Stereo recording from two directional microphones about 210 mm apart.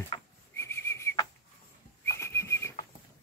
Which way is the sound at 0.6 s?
10° left (ahead or behind).